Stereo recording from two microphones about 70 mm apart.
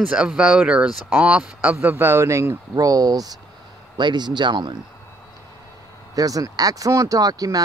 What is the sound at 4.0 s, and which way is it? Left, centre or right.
Speech, right.